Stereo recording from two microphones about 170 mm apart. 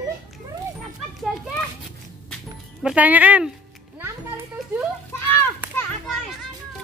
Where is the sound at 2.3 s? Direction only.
Centre (ahead or behind).